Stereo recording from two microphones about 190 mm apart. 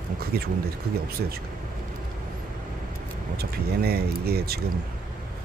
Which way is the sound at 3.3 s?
55° right (ahead or behind).